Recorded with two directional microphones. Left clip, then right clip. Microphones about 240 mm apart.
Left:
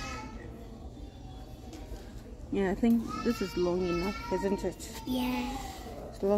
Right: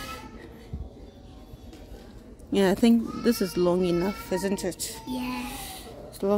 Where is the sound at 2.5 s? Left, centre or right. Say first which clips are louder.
Right 7 dB; right.